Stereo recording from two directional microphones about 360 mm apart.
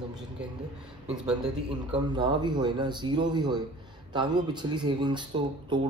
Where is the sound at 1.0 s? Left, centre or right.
Centre.